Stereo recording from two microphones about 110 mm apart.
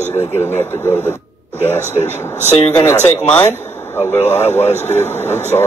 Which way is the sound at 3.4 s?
20° left (ahead or behind).